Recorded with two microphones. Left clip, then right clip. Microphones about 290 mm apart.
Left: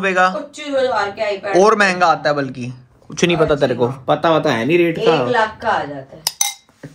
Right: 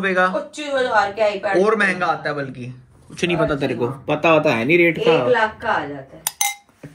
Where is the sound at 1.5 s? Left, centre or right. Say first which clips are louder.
Left 7 dB; centre.